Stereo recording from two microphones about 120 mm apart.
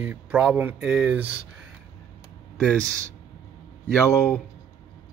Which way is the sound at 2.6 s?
5° left (ahead or behind).